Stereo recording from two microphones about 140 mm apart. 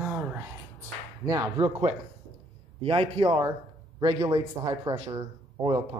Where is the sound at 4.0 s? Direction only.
25° right (ahead or behind).